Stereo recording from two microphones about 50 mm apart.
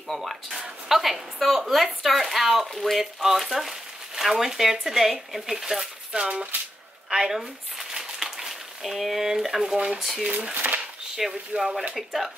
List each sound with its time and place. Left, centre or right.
0.1 s a woman's voice: centre
6.2 s speech: right
7.1 s a sound: centre
9.9 s a woman's voice: centre
10.5 s speech: right
11.1 s a woman's voice: centre